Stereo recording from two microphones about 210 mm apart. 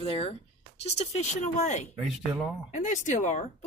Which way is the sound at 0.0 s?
25° left (ahead or behind).